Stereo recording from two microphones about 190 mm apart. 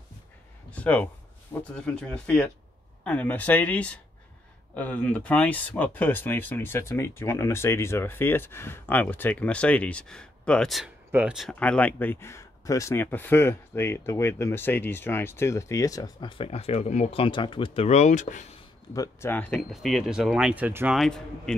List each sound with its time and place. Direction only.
0.7 s speech: 5° left (ahead or behind); by 18.5 s 40° left (ahead or behind)
18.9 s speech: 10° left (ahead or behind)